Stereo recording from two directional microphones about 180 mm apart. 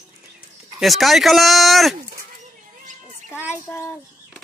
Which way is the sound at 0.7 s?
Centre (ahead or behind).